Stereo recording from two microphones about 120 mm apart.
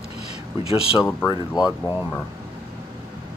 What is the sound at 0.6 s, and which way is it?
Speech, 55° left (ahead or behind).